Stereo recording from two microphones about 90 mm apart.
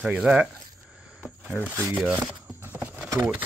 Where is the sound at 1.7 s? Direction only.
30° right (ahead or behind).